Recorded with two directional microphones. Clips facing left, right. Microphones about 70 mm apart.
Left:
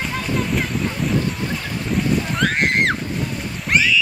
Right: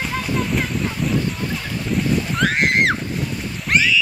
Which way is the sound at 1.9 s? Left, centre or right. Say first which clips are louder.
Even; centre.